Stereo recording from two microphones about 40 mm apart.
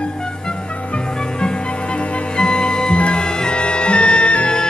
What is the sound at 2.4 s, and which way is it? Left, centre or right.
Music, left.